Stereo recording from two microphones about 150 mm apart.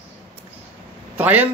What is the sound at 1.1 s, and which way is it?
Speech, 10° right (ahead or behind).